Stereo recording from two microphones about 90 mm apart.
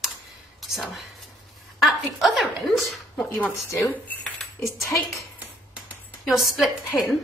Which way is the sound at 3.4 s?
30° left (ahead or behind).